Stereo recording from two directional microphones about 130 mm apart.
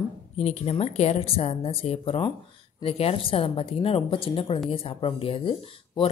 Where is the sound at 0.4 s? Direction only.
55° left (ahead or behind).